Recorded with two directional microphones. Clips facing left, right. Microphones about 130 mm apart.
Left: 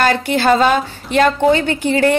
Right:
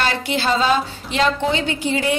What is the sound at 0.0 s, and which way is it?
A woman's voice, 50° left (ahead or behind).